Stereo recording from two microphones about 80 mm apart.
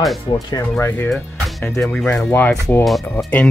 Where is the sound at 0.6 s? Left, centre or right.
Left.